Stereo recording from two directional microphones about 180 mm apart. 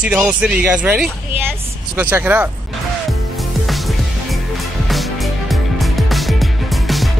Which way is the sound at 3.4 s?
Centre (ahead or behind).